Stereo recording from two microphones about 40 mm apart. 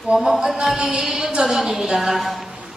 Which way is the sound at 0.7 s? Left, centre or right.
Centre.